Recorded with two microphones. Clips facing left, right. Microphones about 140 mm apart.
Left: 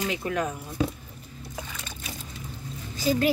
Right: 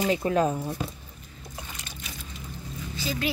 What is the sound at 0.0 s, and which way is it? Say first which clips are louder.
Speech: right 5 dB; 35° right (ahead or behind).